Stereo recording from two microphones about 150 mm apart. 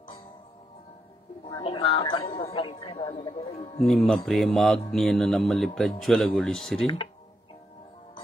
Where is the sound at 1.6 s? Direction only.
40° left (ahead or behind).